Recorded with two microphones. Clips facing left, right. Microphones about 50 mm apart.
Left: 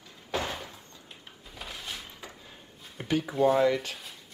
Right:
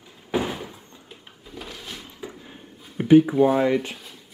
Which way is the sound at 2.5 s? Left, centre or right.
Right.